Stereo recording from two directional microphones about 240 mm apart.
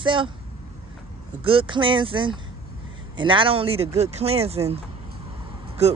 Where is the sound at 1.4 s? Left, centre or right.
Right.